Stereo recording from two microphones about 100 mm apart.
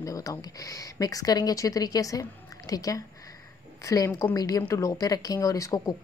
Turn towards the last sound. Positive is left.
turn(degrees=35)  # may be behind; listen again after turning